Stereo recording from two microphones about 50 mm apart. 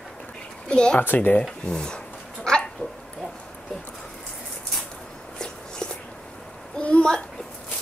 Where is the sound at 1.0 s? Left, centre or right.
Left.